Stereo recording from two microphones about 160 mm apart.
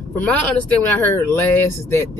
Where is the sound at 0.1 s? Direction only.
10° left (ahead or behind).